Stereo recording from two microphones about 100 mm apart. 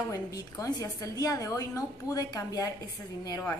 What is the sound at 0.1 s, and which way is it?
A woman's voice, 40° left (ahead or behind).